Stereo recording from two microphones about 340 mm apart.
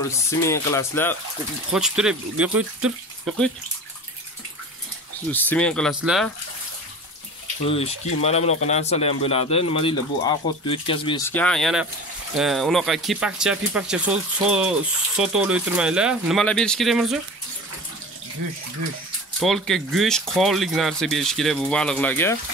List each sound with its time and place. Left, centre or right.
0.4 s speech: centre
5.3 s speech: centre
7.6 s speech: centre
19.4 s speech: centre